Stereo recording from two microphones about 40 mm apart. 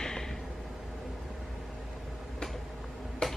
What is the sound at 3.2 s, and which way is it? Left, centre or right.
Tick-tock, centre.